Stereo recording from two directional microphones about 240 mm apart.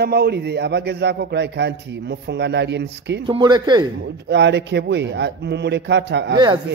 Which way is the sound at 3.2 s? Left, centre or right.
Centre.